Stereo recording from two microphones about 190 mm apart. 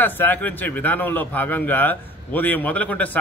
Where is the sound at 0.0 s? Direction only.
10° left (ahead or behind).